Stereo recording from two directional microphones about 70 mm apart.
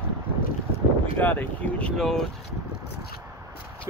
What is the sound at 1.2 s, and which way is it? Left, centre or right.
Speech, left.